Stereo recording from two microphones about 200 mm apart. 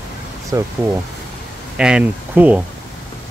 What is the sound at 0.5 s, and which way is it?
Speech, 15° right (ahead or behind).